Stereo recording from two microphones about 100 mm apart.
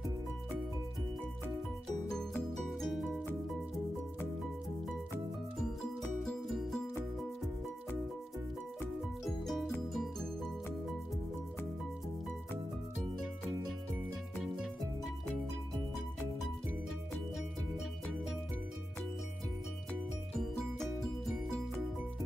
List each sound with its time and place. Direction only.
2.8 s music: centre (ahead or behind)
6.2 s music: centre (ahead or behind)
9.2 s music: centre (ahead or behind)